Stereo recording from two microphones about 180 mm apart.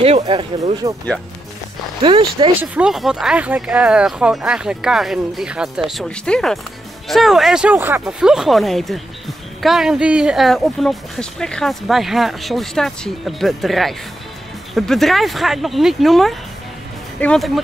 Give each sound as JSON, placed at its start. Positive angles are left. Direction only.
{"t": 0.0, "sound": "speech", "side_deg": -30}
{"t": 0.8, "sound": "speech", "side_deg": -20}
{"t": 2.0, "sound": "speech", "side_deg": -25}
{"t": 2.6, "sound": "speech", "side_deg": -5}